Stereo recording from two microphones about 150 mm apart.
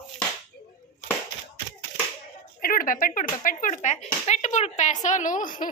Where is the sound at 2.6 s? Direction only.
65° left (ahead or behind).